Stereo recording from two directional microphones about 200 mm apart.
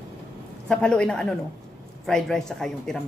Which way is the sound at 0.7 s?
5° left (ahead or behind).